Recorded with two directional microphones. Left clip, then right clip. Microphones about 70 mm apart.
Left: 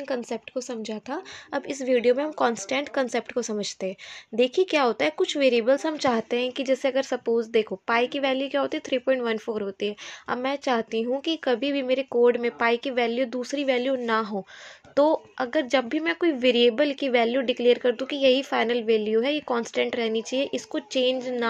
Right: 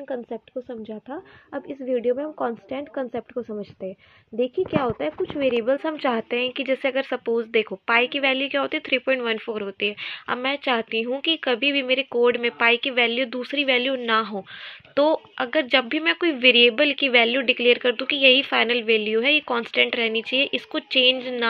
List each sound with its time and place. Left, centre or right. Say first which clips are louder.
0.1 s speech: left 1 dB; left
1.1 s speech: left 4 dB; left
1.9 s a woman's voice: left 2 dB; left